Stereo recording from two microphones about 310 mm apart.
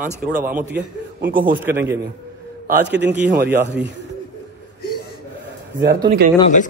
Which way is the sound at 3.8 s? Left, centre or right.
Centre.